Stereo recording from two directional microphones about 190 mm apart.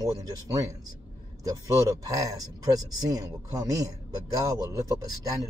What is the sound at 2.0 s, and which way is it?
Speech, 20° right (ahead or behind).